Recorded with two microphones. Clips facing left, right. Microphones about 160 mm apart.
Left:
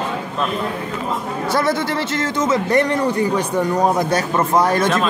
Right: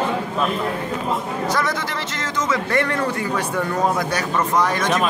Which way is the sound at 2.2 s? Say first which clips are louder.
Left 3 dB; 25° left (ahead or behind).